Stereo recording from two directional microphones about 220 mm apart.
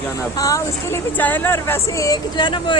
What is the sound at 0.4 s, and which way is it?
Speech, 15° left (ahead or behind).